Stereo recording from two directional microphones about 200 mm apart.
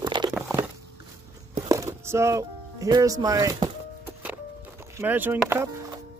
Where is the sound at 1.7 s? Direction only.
15° right (ahead or behind).